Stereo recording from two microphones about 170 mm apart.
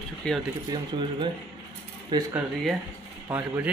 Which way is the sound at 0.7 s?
30° right (ahead or behind).